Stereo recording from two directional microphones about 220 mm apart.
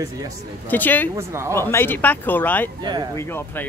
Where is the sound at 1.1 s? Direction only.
10° right (ahead or behind).